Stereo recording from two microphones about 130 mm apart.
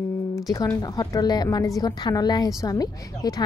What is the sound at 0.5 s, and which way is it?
Speech, 25° left (ahead or behind).